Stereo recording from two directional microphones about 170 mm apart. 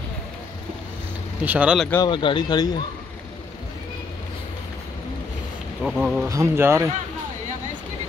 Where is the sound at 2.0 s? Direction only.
30° left (ahead or behind).